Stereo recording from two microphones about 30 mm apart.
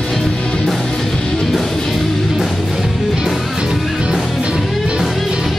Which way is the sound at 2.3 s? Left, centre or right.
Centre.